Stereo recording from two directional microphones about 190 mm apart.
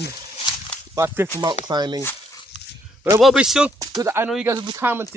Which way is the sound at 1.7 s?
20° right (ahead or behind).